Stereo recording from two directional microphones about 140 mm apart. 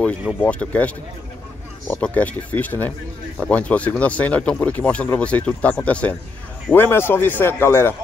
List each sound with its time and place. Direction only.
0.4 s speech: 10° left (ahead or behind)
2.0 s speech: 10° left (ahead or behind)